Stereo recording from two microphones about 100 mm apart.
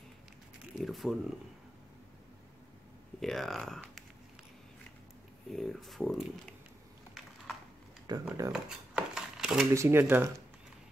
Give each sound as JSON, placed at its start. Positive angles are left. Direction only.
{"t": 0.7, "sound": "speech", "side_deg": 0}
{"t": 3.2, "sound": "speech", "side_deg": 5}
{"t": 5.5, "sound": "speech", "side_deg": 5}
{"t": 8.1, "sound": "speech", "side_deg": -45}
{"t": 8.5, "sound": "a sound", "side_deg": -10}
{"t": 9.8, "sound": "speech", "side_deg": -25}